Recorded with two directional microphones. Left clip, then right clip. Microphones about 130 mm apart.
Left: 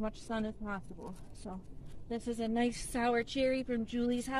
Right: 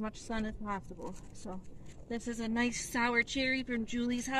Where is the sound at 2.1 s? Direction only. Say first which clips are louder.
Left 2 dB; 30° left (ahead or behind).